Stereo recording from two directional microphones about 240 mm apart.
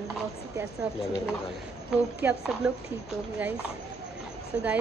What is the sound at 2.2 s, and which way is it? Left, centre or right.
Speech, centre.